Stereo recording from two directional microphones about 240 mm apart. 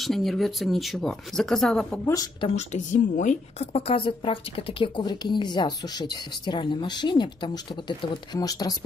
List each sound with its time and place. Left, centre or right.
0.0 s speech: centre
2.1 s a woman's voice: left